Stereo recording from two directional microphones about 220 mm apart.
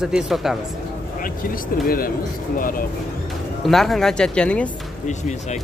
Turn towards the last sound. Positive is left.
turn(degrees=30)  # may be behind; listen again after turning